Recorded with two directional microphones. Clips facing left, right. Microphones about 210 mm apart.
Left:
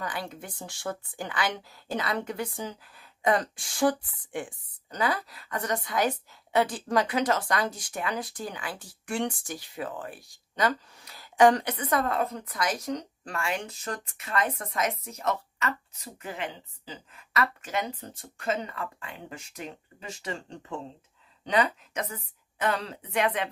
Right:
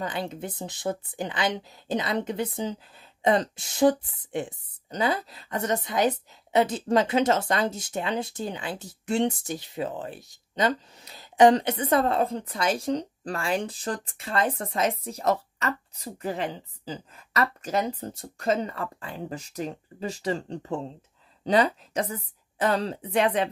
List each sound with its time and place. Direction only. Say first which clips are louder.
0.0 s a woman's voice: right 4 dB; 25° right (ahead or behind)